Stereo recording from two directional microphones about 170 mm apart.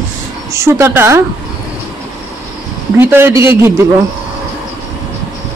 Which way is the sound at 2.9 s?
15° right (ahead or behind).